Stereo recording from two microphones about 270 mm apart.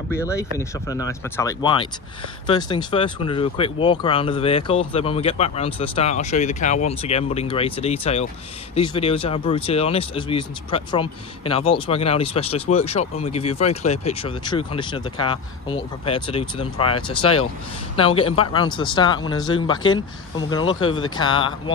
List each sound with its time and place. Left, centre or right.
0.1 s speech: centre